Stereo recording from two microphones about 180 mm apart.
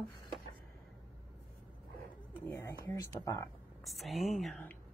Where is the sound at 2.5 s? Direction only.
15° left (ahead or behind).